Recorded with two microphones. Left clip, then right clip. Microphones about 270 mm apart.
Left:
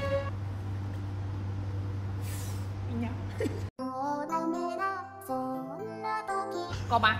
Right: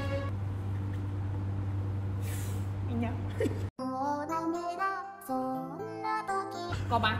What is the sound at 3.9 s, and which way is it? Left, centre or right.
Music, centre.